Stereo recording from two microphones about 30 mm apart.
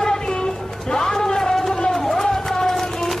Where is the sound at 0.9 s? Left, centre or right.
Centre.